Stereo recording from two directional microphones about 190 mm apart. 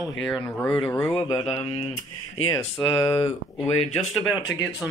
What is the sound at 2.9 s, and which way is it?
Speech, 20° left (ahead or behind).